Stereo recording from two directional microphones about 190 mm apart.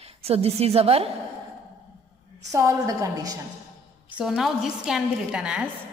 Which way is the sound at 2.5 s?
15° right (ahead or behind).